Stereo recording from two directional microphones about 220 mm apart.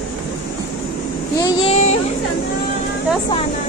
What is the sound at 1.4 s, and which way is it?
Speech, 25° left (ahead or behind).